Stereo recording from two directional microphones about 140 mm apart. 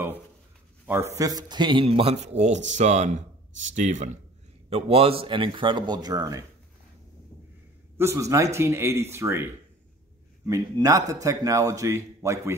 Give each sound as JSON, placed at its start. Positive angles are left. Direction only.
{"t": 0.8, "sound": "a man's voice", "side_deg": -20}
{"t": 4.6, "sound": "speech", "side_deg": -45}
{"t": 8.0, "sound": "a man's voice", "side_deg": -20}